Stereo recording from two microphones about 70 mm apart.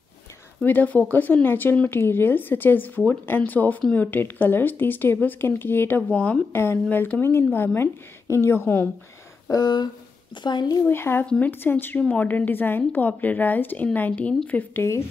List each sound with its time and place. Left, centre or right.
0.7 s a woman's voice: left
6.0 s speech: centre
6.5 s a woman's voice: left
9.5 s speech: left
10.9 s a woman's voice: left
11.2 s speech: centre
11.6 s speech: left
14.8 s a woman's voice: left